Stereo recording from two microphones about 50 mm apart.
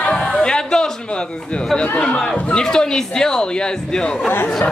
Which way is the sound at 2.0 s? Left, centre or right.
Centre.